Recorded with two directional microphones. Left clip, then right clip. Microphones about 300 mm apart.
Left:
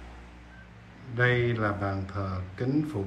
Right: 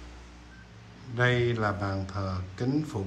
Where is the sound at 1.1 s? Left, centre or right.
Centre.